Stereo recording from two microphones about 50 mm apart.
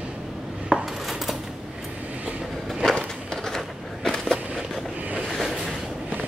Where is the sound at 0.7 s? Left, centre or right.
Centre.